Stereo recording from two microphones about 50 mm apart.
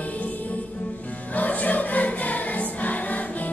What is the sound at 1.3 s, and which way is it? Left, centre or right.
Choir, left.